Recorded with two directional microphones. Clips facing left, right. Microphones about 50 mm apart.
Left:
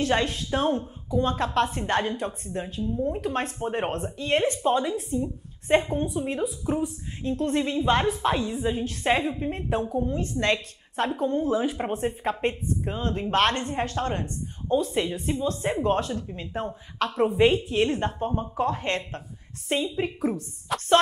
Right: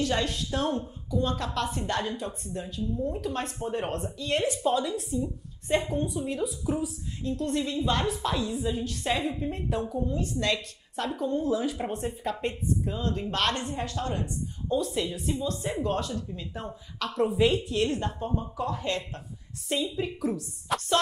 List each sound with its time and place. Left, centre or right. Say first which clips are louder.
0.0 s speech: left 3 dB; left
20.7 s music: even; centre